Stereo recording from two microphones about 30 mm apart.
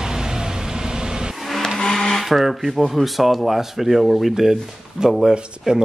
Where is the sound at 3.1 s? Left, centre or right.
Centre.